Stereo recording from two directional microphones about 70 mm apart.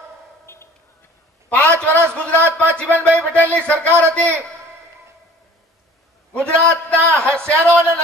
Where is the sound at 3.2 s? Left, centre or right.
Left.